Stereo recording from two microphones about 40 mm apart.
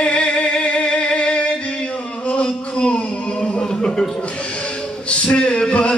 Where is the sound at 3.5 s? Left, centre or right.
Left.